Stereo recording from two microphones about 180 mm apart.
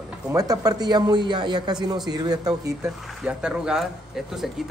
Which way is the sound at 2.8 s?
5° right (ahead or behind).